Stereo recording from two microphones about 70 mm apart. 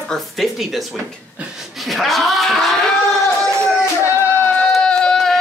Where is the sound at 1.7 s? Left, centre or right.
Centre.